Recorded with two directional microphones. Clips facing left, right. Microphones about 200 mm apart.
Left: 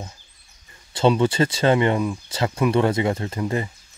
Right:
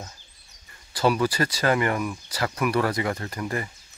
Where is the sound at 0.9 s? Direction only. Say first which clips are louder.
Left 4 dB; 25° left (ahead or behind).